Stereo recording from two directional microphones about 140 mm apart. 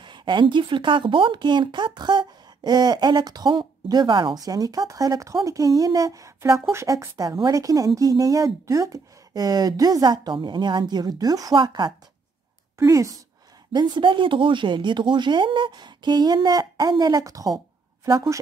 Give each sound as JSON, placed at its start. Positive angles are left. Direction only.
{"t": 0.0, "sound": "speech", "side_deg": -35}
{"t": 12.7, "sound": "a woman's voice", "side_deg": -20}
{"t": 13.7, "sound": "speech", "side_deg": -35}